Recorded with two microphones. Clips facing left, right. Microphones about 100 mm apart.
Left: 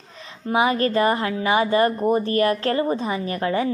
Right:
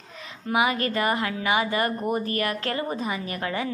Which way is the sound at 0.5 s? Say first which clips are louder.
Left 4 dB; 30° left (ahead or behind).